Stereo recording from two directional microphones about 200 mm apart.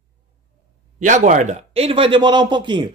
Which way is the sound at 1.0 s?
40° right (ahead or behind).